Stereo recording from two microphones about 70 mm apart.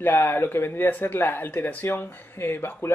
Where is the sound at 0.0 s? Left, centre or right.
Left.